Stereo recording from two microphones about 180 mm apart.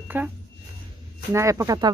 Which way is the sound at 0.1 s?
10° right (ahead or behind).